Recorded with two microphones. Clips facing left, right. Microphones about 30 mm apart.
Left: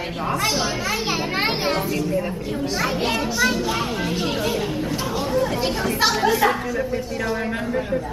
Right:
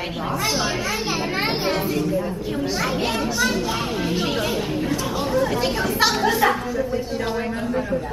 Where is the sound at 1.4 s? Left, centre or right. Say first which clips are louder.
Left 1 dB; centre.